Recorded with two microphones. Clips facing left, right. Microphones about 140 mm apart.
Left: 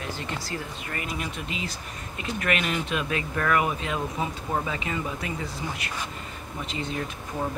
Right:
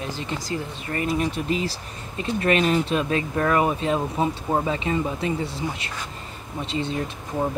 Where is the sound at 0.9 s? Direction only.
35° right (ahead or behind).